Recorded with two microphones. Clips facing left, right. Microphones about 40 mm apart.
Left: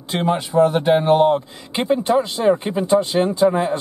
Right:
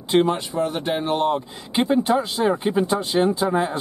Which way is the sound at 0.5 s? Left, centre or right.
Centre.